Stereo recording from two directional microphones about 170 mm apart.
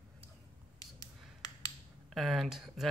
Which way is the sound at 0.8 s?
20° left (ahead or behind).